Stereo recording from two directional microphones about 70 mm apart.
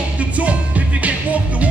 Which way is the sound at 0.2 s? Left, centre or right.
Centre.